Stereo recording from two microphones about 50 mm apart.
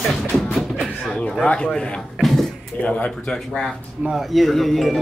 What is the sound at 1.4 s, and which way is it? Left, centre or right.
Speech, left.